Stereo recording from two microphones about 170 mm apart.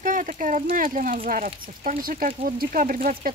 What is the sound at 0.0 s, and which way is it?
Speech, 50° right (ahead or behind).